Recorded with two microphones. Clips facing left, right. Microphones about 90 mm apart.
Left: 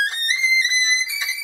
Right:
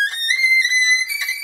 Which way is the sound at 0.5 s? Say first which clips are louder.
Right 3 dB; 25° left (ahead or behind).